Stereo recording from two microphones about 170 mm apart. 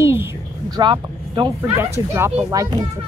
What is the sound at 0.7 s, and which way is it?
Speech, 25° right (ahead or behind).